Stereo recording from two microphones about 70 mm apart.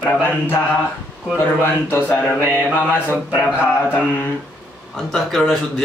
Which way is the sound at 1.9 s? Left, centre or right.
Left.